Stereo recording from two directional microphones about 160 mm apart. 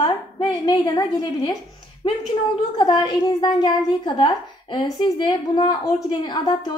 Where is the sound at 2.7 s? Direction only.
30° left (ahead or behind).